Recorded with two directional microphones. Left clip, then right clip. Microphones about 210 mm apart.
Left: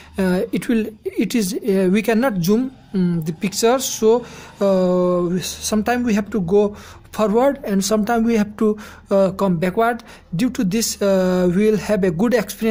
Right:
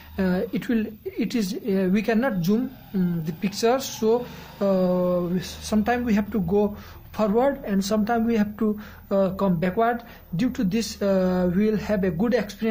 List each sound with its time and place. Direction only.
0.1 s a woman's voice: 35° left (ahead or behind)